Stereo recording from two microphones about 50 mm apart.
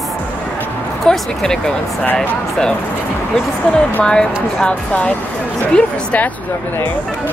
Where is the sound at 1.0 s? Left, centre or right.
Centre.